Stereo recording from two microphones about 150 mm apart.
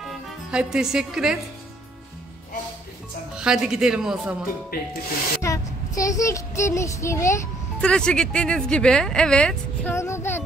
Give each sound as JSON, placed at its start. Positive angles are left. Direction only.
{"t": 0.0, "sound": "speech", "side_deg": -5}
{"t": 3.3, "sound": "speech", "side_deg": -5}
{"t": 4.7, "sound": "speech", "side_deg": 90}
{"t": 5.4, "sound": "child singing", "side_deg": 20}
{"t": 7.8, "sound": "speech", "side_deg": 5}
{"t": 9.9, "sound": "child singing", "side_deg": 20}